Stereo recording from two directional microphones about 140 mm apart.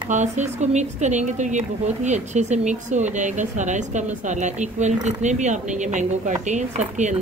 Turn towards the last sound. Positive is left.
turn(degrees=-60)  # may be behind; listen again after turning